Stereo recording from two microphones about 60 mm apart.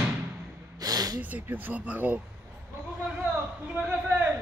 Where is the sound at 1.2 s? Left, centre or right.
Right.